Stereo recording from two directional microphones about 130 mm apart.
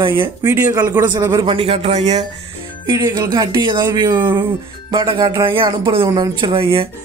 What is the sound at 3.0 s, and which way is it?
Speech, 30° right (ahead or behind).